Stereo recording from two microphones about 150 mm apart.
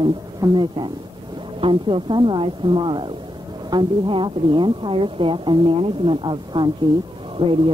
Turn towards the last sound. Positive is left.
turn(degrees=-35)  # may be behind; listen again after turning